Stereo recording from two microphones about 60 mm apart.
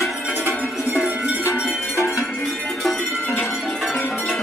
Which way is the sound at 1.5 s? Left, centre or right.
Left.